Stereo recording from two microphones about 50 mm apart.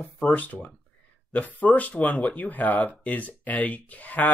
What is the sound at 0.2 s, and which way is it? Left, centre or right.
Speech, left.